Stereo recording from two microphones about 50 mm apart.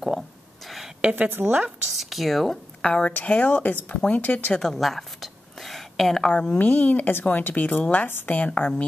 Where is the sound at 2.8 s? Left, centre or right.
Left.